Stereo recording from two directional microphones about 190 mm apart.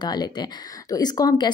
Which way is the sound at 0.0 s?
20° left (ahead or behind).